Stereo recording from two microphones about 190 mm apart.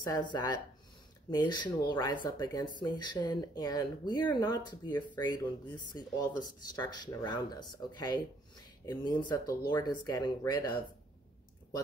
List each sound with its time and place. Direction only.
0.0 s speech: 20° left (ahead or behind)